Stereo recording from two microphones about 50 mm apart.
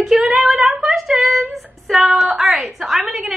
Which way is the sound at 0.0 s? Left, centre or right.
Centre.